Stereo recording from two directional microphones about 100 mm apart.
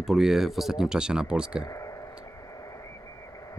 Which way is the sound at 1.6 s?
35° left (ahead or behind).